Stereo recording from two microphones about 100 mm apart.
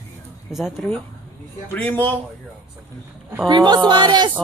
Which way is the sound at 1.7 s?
15° left (ahead or behind).